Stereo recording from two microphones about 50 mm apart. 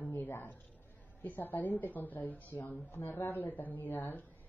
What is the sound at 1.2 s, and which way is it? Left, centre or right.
A woman's voice, left.